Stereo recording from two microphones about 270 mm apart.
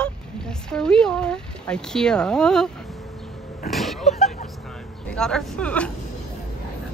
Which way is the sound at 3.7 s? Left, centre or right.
Centre.